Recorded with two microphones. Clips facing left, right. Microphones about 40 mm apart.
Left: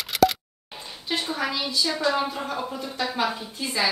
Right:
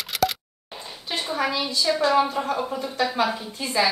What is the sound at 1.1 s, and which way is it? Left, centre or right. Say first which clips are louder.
Speech: even; centre.